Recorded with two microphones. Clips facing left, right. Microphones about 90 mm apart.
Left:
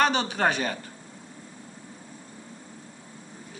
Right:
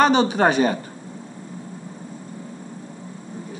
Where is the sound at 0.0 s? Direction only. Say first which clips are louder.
Right 7 dB; 15° right (ahead or behind).